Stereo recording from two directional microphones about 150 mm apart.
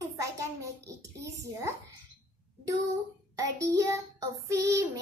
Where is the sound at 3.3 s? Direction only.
20° right (ahead or behind).